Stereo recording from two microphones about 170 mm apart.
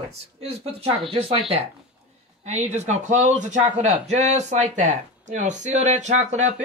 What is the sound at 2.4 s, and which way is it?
Speech, 40° right (ahead or behind).